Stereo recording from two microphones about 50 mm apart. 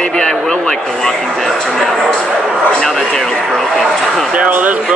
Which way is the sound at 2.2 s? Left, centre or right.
Centre.